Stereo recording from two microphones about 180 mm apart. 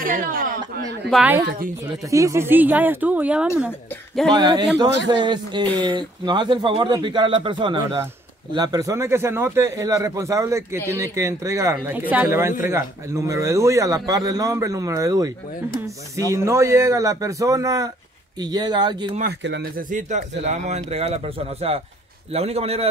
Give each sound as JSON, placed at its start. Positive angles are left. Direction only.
{"t": 0.0, "sound": "speech", "side_deg": -50}
{"t": 1.1, "sound": "a man's voice", "side_deg": -10}
{"t": 4.3, "sound": "a man's voice", "side_deg": -25}
{"t": 19.4, "sound": "speech", "side_deg": -80}
{"t": 19.8, "sound": "speech", "side_deg": -45}